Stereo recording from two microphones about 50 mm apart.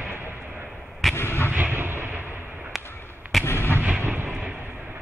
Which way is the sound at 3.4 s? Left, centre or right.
Left.